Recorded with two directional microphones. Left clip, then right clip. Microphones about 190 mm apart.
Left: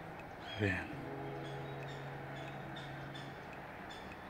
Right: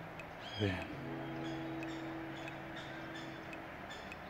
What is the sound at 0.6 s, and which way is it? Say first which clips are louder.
Speech: left 2 dB; 10° right (ahead or behind).